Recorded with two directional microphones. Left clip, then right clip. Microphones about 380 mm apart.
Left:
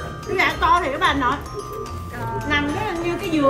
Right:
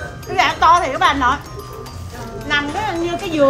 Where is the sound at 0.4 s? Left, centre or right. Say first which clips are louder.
Right 5 dB; right.